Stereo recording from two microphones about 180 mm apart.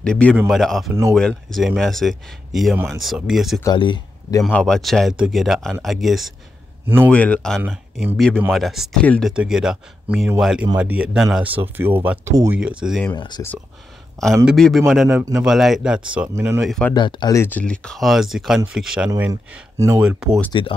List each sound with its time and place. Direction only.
0.0 s speech: 5° left (ahead or behind)
3.6 s speech: 25° left (ahead or behind)
4.4 s speech: 5° left (ahead or behind)
7.6 s speech: 10° right (ahead or behind)
13.1 s speech: 25° left (ahead or behind)
14.4 s speech: centre (ahead or behind)
15.1 s speech: 15° right (ahead or behind)
15.4 s speech: centre (ahead or behind)
16.6 s speech: centre (ahead or behind)
16.9 s speech: 25° left (ahead or behind); by 20.2 s 5° right (ahead or behind)
20.5 s speech: 25° left (ahead or behind)